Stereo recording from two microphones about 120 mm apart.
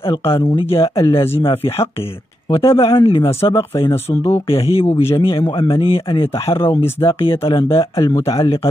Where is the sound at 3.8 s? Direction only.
20° left (ahead or behind).